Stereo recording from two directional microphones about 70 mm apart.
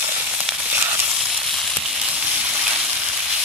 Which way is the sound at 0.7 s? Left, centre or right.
Right.